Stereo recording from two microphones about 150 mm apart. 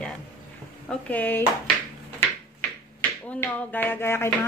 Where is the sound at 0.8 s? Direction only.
10° left (ahead or behind).